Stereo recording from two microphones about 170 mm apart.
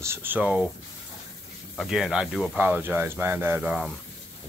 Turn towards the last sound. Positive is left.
turn(degrees=-5)  # may be behind; listen again after turning